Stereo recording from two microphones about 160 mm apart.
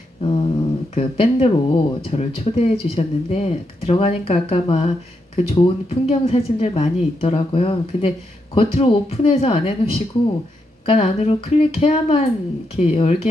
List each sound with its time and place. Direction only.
0.2 s a sound: 35° left (ahead or behind)
0.9 s speech: 35° left (ahead or behind)
10.9 s speech: 40° left (ahead or behind)